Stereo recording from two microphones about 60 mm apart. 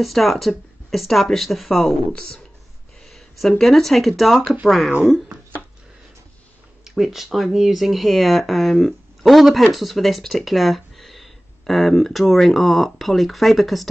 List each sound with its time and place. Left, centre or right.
0.0 s speech: centre
2.1 s speech: centre
3.1 s a woman's voice: centre
6.8 s speech: centre